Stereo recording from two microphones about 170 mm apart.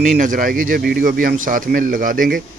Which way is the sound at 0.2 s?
50° right (ahead or behind).